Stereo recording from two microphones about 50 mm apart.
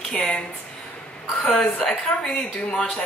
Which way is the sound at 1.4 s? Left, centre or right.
Left.